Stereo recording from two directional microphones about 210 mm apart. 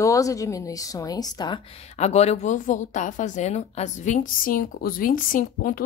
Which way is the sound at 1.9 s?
30° left (ahead or behind).